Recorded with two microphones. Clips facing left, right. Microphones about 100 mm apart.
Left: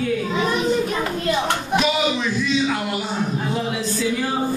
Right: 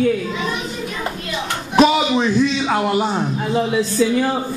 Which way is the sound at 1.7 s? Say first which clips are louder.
Right 8 dB; 45° right (ahead or behind).